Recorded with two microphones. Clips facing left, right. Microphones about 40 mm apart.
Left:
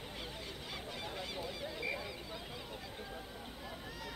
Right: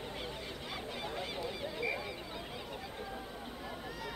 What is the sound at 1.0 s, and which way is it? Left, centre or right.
Honk, centre.